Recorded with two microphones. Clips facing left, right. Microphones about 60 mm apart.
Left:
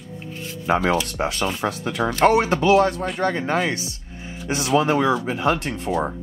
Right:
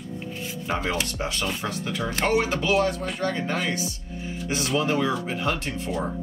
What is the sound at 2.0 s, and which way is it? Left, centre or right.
Speech, left.